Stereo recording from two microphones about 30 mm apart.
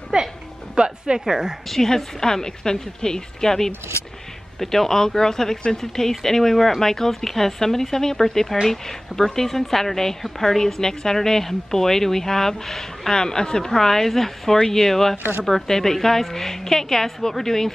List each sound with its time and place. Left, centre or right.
0.1 s speech: right
1.7 s speech: centre
13.1 s speech: left